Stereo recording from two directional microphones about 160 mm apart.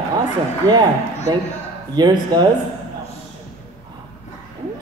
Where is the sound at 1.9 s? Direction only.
25° right (ahead or behind).